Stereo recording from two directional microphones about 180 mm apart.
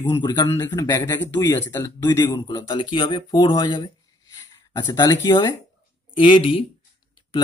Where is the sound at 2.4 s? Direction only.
25° left (ahead or behind).